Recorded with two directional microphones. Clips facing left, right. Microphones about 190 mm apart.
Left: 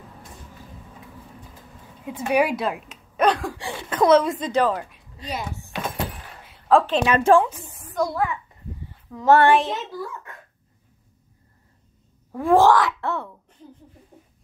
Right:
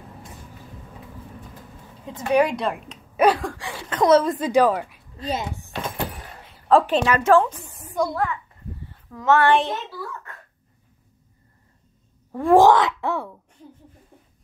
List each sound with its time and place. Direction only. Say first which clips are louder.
2.0 s a woman's voice: right 1 dB; 10° left (ahead or behind)
3.2 s a sound: right 2 dB; 5° right (ahead or behind)
3.9 s a woman's voice: even; centre (ahead or behind)
5.1 s speech: right 4 dB; 30° right (ahead or behind)
6.5 s a sound: right 1 dB; centre (ahead or behind)
7.1 s a woman's voice: left 3 dB; 30° left (ahead or behind)
7.3 s a woman's voice: even; 15° left (ahead or behind)
8.0 s a woman's voice: even; centre (ahead or behind)
9.2 s child singing: left 3 dB; 35° left (ahead or behind)
9.5 s a woman's voice: left 1 dB; 5° left (ahead or behind)
12.3 s a sound: right 1 dB; centre (ahead or behind)
12.5 s speech: right 2 dB; 20° right (ahead or behind)